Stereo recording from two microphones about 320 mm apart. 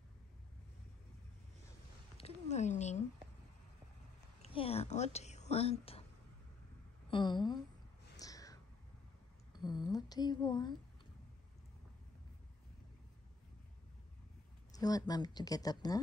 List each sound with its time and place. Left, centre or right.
2.1 s cat: centre
4.4 s whispering: centre
7.1 s speech: centre
8.2 s a sound: centre
14.7 s speech: centre